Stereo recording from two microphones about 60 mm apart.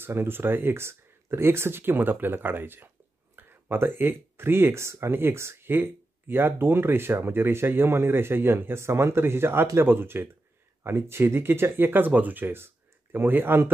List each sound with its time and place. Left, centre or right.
0.0 s speech: right